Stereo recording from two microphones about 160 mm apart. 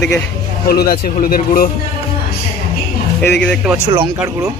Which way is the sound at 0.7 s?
70° left (ahead or behind).